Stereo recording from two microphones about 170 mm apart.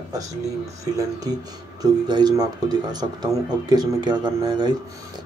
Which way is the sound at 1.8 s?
25° right (ahead or behind).